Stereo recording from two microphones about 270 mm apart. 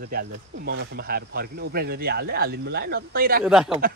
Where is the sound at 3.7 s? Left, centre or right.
Right.